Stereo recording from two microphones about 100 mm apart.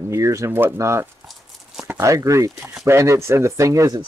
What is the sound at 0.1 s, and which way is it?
Speech, 30° right (ahead or behind).